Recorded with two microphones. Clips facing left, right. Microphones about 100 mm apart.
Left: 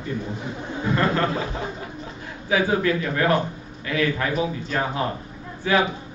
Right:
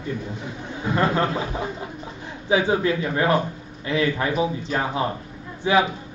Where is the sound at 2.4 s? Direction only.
20° right (ahead or behind).